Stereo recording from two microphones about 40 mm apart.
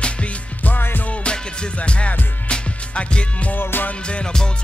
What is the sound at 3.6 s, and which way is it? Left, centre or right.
Music, left.